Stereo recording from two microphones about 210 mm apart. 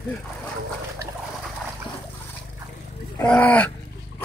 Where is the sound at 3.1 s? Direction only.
5° left (ahead or behind).